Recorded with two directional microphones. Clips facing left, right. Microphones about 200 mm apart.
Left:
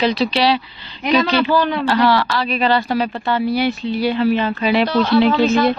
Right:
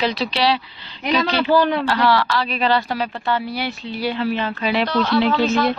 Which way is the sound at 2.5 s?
10° left (ahead or behind).